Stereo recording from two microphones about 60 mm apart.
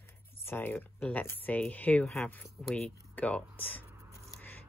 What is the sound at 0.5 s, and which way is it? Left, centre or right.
Speech, left.